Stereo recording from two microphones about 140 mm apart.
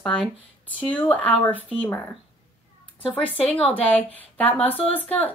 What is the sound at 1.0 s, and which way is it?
Speech, 10° left (ahead or behind).